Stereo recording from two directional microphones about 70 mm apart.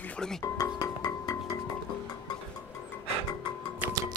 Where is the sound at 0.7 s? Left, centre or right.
Left.